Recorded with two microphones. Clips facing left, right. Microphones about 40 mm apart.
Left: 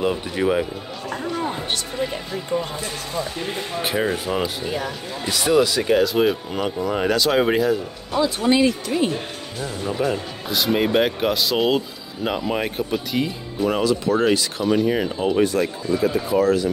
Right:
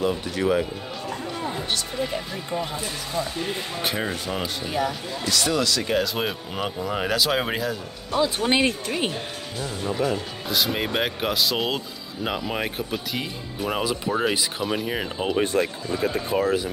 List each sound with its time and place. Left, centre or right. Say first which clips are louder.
0.0 s speech: left 3 dB; centre
1.4 s music: left 2 dB; centre
2.0 s speech: left 3 dB; centre
5.2 s speech: left 6 dB; centre
5.9 s speech: left 7 dB; centre
8.5 s speech: left 4 dB; right
9.6 s speech: left 2 dB; centre
13.7 s speech: left 6 dB; centre
16.0 s speech: left 4 dB; right